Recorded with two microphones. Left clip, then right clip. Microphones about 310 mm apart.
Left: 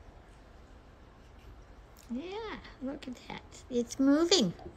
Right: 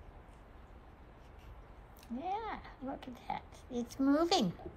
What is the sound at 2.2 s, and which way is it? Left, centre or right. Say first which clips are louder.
Oink: right 3 dB; centre.